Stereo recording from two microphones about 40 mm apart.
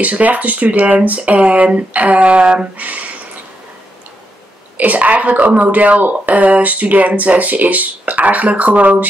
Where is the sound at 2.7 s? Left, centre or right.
Right.